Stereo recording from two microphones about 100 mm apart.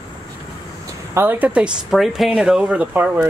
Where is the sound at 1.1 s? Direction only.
20° right (ahead or behind).